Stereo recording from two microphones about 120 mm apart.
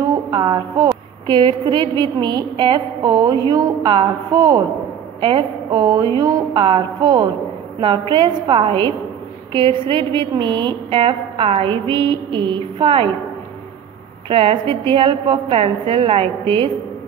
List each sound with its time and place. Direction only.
0.3 s a woman's voice: 40° right (ahead or behind)
14.3 s a woman's voice: 50° right (ahead or behind)